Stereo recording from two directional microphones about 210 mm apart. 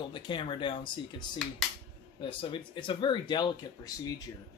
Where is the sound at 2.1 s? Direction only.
25° left (ahead or behind).